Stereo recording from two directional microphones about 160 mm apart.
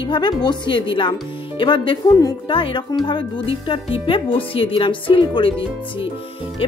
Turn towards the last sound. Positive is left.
turn(degrees=35)  # may be behind; listen again after turning